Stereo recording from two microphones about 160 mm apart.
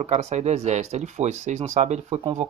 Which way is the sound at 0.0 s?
45° right (ahead or behind).